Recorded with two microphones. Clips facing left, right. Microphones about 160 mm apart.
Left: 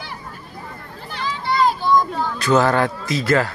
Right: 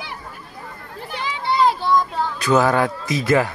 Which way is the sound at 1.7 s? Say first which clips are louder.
Left 1 dB; 30° right (ahead or behind).